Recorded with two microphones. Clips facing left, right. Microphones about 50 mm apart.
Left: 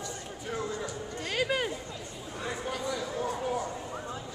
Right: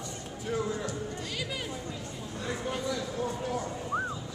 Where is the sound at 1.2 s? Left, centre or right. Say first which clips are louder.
Left 6 dB; left.